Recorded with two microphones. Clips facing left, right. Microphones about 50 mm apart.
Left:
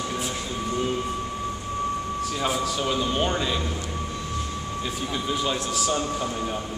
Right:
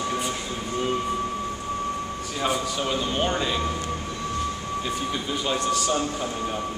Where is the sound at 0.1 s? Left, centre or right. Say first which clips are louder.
Right 1 dB; centre.